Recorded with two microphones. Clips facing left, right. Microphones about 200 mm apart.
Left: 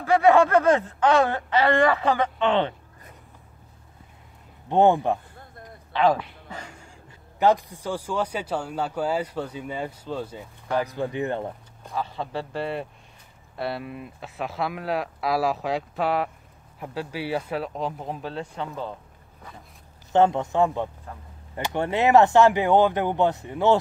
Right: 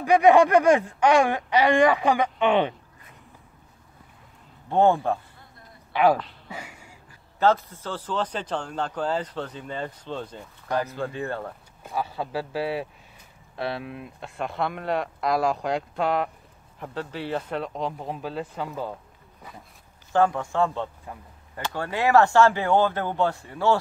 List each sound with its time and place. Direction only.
0.0 s speech: 15° right (ahead or behind)
4.6 s a man's voice: 20° left (ahead or behind)
5.9 s speech: 10° right (ahead or behind)
6.5 s a sound: 10° right (ahead or behind)
7.3 s a man's voice: 15° left (ahead or behind)
11.8 s speech: 10° right (ahead or behind)
20.1 s speech: 20° left (ahead or behind)